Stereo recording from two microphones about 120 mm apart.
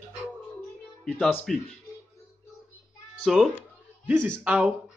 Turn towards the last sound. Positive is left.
turn(degrees=-10)  # may be behind; listen again after turning